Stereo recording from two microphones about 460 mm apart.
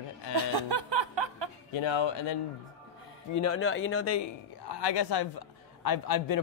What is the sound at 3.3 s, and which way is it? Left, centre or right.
Speech, left.